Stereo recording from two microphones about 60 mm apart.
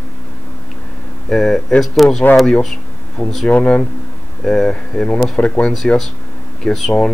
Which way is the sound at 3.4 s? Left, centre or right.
Left.